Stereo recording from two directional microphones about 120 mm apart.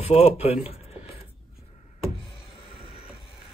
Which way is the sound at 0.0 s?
55° left (ahead or behind).